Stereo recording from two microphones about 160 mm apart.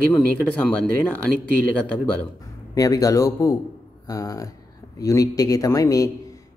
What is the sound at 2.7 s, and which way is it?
A man's voice, 20° left (ahead or behind).